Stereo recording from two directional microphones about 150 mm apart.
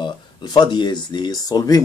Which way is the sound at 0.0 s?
30° left (ahead or behind).